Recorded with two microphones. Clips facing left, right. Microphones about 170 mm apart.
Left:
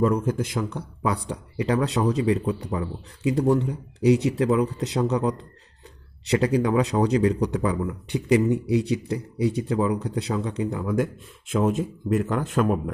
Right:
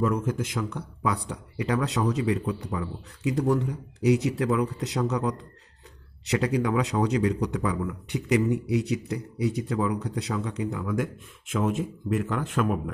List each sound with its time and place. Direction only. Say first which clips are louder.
0.0 s speech: left 4 dB; 35° left (ahead or behind)